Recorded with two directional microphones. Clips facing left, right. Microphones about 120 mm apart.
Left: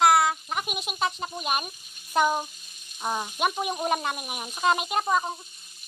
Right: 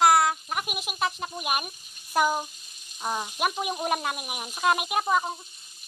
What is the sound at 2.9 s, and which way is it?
Speech, centre (ahead or behind).